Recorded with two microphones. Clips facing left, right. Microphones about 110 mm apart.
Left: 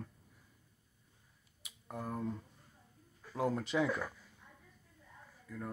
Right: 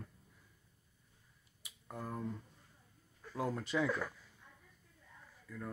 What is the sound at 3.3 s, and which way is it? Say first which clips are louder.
Speech: left 3 dB; 20° left (ahead or behind).